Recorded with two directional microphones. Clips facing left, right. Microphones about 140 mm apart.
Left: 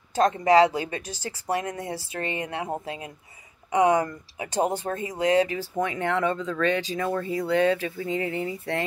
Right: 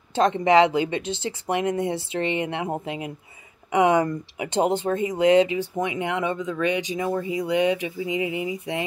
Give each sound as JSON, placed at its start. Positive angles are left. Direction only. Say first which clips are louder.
{"t": 0.1, "sound": "speech", "louder": "right 1 dB", "side_deg": -25}